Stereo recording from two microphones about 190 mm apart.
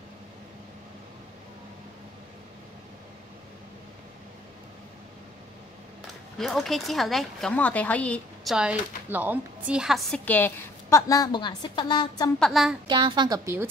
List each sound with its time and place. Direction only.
6.3 s speech: centre (ahead or behind)
8.5 s speech: 10° right (ahead or behind); by 12.3 s 25° left (ahead or behind)
12.4 s speech: centre (ahead or behind)
12.8 s a woman's voice: 25° right (ahead or behind)